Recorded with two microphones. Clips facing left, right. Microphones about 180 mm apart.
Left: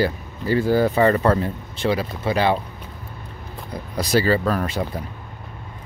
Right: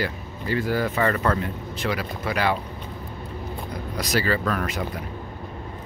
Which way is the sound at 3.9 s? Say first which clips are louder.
Left 6 dB; 30° left (ahead or behind).